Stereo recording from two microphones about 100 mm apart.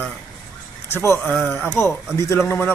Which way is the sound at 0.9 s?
30° left (ahead or behind).